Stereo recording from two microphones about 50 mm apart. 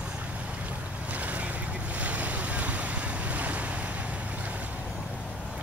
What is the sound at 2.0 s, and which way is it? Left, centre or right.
Waves, right.